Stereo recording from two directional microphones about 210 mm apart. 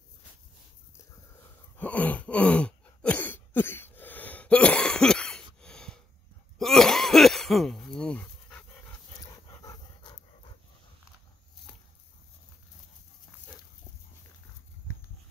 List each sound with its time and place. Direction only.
1.8 s throat clearing: 5° left (ahead or behind)
6.6 s cough: centre (ahead or behind)
9.2 s dog: 15° left (ahead or behind)